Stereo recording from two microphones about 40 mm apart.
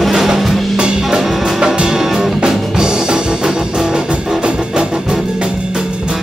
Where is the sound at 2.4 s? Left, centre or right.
Centre.